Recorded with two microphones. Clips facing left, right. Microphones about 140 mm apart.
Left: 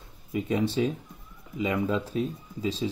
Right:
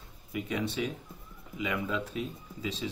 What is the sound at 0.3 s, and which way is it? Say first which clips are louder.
Speech: left 6 dB; 30° left (ahead or behind).